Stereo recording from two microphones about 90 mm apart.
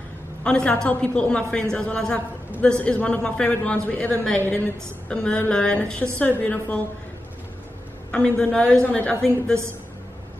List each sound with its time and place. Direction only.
0.4 s a woman's voice: 10° left (ahead or behind)
8.1 s a woman's voice: 10° left (ahead or behind)